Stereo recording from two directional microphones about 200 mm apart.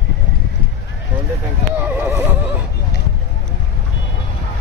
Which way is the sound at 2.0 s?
10° right (ahead or behind).